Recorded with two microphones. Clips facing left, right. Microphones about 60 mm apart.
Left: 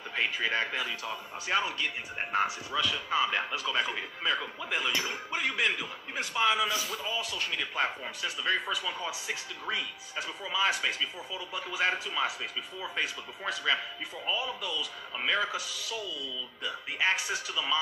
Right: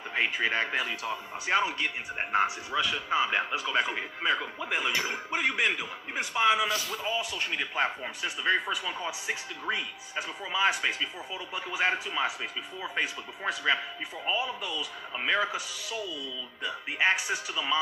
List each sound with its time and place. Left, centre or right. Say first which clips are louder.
0.1 s speech: right 2 dB; right